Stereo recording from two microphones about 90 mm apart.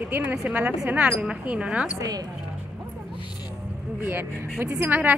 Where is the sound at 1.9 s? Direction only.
40° right (ahead or behind).